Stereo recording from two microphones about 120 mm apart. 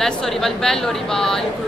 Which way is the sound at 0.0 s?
5° left (ahead or behind).